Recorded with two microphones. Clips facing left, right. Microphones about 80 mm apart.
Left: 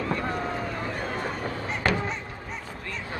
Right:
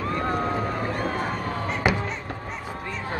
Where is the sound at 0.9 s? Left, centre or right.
Right.